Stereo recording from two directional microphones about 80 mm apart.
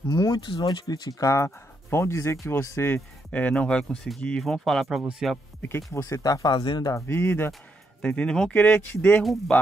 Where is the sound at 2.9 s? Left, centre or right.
Centre.